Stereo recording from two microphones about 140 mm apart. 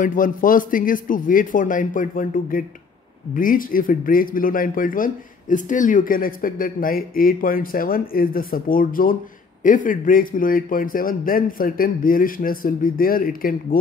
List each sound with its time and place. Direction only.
0.0 s speech: 75° left (ahead or behind)
9.6 s a man's voice: 75° left (ahead or behind); by 13.7 s 90° left